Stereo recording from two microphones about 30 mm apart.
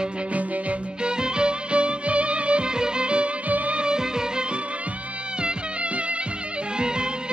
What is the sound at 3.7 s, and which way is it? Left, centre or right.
Music, right.